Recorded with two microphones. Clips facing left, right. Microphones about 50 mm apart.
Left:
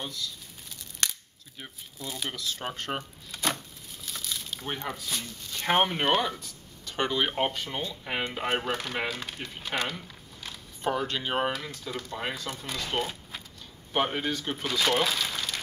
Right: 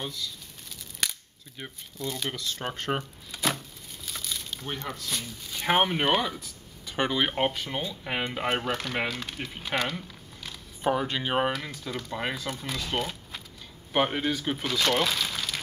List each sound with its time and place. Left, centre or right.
0.0 s crumpling: centre
1.6 s speech: centre
4.6 s speech: centre
5.0 s speech: centre
10.8 s speech: centre